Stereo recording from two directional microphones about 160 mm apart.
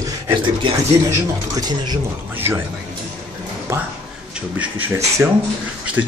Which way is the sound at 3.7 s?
15° right (ahead or behind).